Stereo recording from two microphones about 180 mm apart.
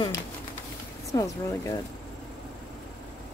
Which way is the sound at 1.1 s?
15° left (ahead or behind).